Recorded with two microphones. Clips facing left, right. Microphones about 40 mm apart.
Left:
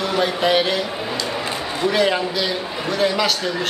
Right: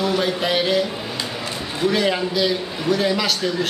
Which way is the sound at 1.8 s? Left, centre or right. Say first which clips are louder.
Left 1 dB; centre.